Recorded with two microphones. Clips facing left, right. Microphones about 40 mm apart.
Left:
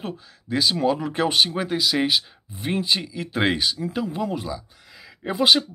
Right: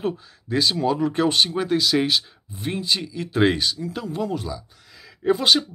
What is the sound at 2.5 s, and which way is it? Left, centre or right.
Speech, centre.